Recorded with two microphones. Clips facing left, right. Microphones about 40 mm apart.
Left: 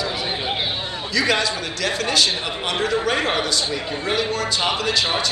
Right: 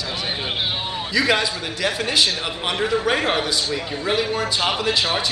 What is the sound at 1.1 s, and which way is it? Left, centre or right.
A man's voice, centre.